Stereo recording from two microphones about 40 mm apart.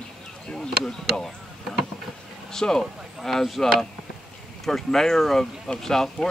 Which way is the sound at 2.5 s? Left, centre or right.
Centre.